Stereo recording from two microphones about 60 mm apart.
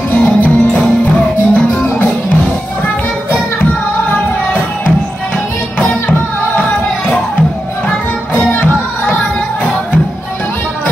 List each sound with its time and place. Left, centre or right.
0.1 s music: left